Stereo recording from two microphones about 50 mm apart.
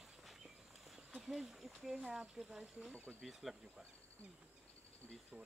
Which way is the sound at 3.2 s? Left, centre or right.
Centre.